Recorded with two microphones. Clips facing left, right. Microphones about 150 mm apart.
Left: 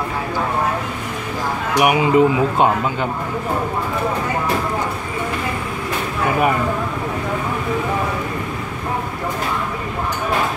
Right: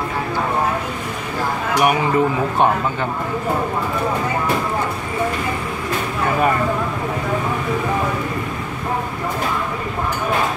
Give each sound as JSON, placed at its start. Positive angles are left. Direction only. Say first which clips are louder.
{"t": 1.8, "sound": "speech", "louder": "left 3 dB", "side_deg": 15}